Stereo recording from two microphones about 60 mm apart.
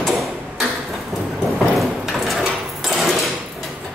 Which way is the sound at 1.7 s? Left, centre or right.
Centre.